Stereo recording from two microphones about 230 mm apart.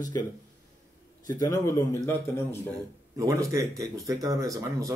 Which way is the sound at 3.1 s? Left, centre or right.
Centre.